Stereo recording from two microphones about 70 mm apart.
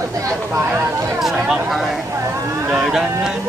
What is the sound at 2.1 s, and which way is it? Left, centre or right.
Chatter, right.